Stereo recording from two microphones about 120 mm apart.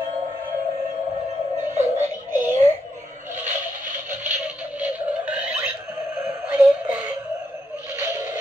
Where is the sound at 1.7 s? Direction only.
70° right (ahead or behind).